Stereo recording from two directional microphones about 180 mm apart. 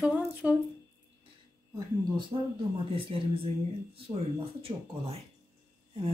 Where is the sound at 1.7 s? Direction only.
25° right (ahead or behind).